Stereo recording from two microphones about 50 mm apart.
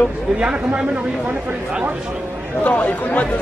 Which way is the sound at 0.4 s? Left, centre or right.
Right.